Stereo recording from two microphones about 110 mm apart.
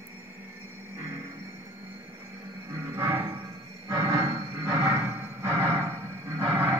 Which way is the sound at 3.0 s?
25° right (ahead or behind).